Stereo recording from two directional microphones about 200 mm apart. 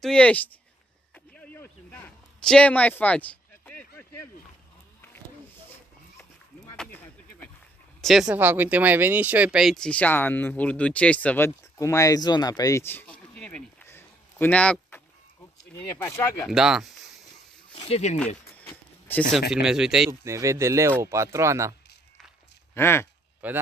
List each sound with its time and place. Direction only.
0.0 s speech: 5° left (ahead or behind)
1.1 s a sound: 5° left (ahead or behind)
6.8 s a sound: 10° left (ahead or behind)
8.0 s speech: centre (ahead or behind)
16.4 s speech: centre (ahead or behind)
17.7 s speech: 30° left (ahead or behind)
18.6 s a sound: 10° left (ahead or behind)
19.5 s speech: 5° right (ahead or behind)
20.1 s speech: 15° right (ahead or behind)
22.8 s speech: 10° left (ahead or behind)
23.4 s speech: 5° right (ahead or behind)